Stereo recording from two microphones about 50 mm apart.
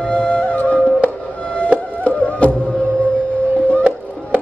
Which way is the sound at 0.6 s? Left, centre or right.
Left.